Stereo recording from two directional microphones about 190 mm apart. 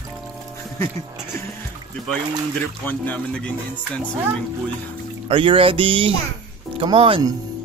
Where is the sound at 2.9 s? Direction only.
10° left (ahead or behind).